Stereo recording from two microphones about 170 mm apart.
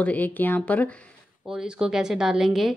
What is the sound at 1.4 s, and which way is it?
Speech, 5° right (ahead or behind).